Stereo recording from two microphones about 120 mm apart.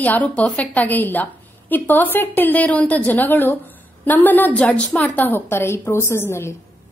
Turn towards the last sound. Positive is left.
turn(degrees=20)  # may be behind; listen again after turning